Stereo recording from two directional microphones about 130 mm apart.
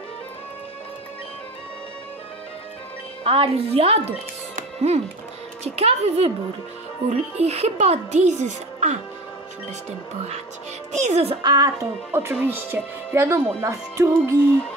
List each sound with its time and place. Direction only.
3.3 s speech: 50° right (ahead or behind)
4.6 s music: 60° right (ahead or behind)
5.6 s speech: 55° right (ahead or behind)
10.9 s speech: 65° right (ahead or behind)
11.2 s speech: 35° right (ahead or behind)